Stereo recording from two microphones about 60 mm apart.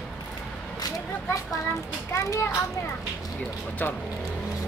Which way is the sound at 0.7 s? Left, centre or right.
Left.